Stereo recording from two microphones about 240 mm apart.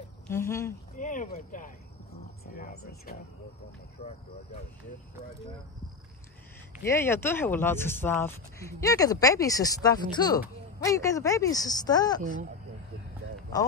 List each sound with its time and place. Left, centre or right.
0.3 s speech: centre
0.9 s speech: left
4.0 s speech: left
6.8 s speech: centre
12.2 s speech: right